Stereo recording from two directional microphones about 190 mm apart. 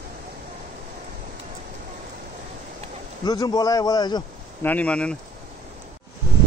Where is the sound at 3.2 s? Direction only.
20° left (ahead or behind).